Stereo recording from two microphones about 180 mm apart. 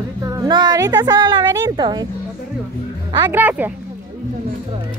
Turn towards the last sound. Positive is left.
turn(degrees=-10)  # may be behind; listen again after turning